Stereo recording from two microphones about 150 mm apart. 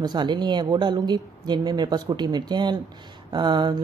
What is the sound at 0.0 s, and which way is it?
Speech, 30° right (ahead or behind).